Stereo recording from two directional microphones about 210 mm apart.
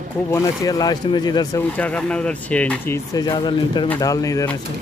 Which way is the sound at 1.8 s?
5° left (ahead or behind).